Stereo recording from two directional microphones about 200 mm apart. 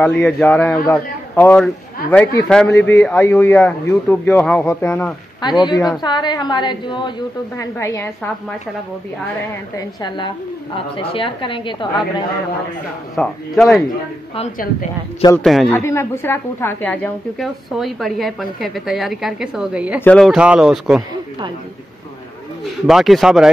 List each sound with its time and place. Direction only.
0.0 s speech: 5° left (ahead or behind)
5.4 s a woman's voice: 20° left (ahead or behind)
7.7 s speech: 10° left (ahead or behind)
9.8 s a woman's voice: 20° left (ahead or behind)
13.1 s a woman's voice: centre (ahead or behind)
15.4 s a woman's voice: centre (ahead or behind)
15.8 s a woman's voice: 15° left (ahead or behind); by 20.0 s 5° right (ahead or behind)
20.0 s a woman's voice: 5° left (ahead or behind)
22.8 s a woman's voice: centre (ahead or behind)